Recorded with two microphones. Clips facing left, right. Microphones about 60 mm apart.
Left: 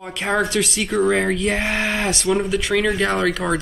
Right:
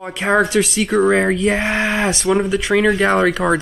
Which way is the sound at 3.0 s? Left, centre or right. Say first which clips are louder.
Right 5 dB; centre.